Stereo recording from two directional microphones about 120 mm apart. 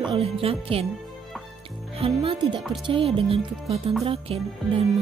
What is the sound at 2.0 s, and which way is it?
Music, 50° right (ahead or behind).